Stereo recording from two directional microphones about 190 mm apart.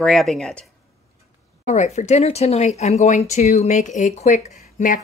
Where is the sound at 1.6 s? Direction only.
40° left (ahead or behind).